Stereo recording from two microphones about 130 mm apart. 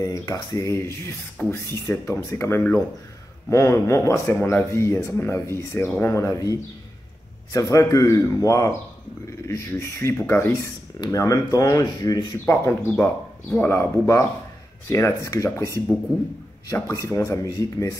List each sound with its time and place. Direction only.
0.0 s speech: 25° left (ahead or behind)
12.4 s speech: 15° left (ahead or behind)